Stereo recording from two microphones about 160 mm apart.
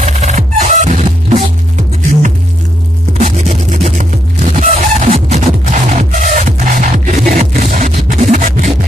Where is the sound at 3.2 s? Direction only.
45° right (ahead or behind).